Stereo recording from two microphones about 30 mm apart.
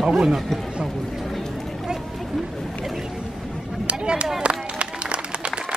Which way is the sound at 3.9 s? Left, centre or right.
Right.